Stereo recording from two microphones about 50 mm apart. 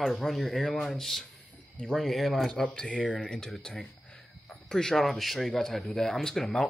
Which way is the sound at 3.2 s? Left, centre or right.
Centre.